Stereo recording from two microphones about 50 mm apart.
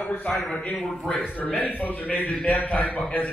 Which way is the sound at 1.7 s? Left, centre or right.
Left.